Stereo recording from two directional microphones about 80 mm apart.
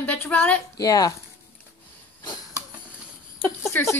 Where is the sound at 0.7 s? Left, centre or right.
Left.